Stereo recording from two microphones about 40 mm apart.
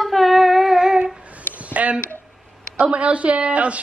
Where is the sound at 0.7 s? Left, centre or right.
Centre.